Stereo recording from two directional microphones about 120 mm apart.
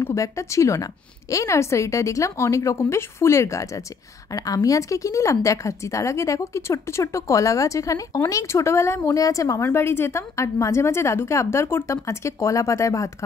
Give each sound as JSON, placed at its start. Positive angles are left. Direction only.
{"t": 0.0, "sound": "speech", "side_deg": 25}